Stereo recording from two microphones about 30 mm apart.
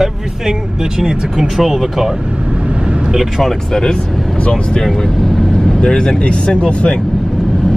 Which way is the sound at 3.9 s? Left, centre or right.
Left.